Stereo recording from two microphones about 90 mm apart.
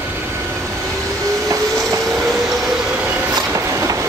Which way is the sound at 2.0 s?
Centre (ahead or behind).